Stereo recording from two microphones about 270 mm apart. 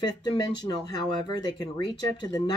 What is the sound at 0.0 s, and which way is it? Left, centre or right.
Speech, centre.